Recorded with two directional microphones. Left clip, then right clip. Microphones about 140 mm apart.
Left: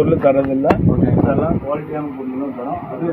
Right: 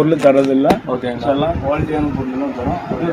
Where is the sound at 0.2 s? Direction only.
Centre (ahead or behind).